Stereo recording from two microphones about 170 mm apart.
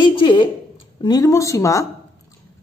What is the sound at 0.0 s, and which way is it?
A woman's voice, 30° left (ahead or behind).